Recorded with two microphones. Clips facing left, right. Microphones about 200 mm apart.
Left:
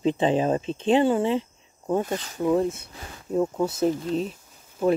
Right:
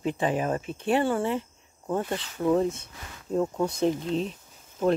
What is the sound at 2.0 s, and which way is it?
Speech, 45° left (ahead or behind).